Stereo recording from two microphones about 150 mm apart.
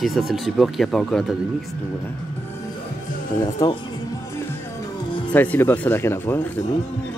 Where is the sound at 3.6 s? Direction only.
25° left (ahead or behind).